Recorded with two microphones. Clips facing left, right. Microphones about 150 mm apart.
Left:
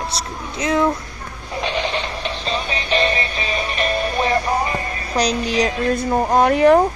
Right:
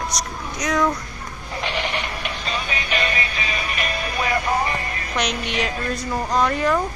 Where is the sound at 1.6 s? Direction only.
20° left (ahead or behind); by 5.7 s 35° left (ahead or behind).